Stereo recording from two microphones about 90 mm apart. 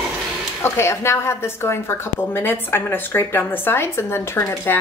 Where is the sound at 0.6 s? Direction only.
30° left (ahead or behind).